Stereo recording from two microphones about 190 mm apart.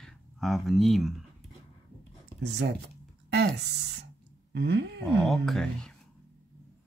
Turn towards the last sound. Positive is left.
turn(degrees=0)  # may be behind; listen again after turning